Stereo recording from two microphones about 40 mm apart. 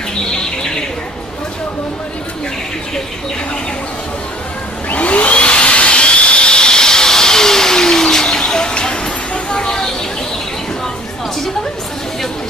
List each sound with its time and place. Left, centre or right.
4.8 s vacuum cleaner: left; by 9.8 s centre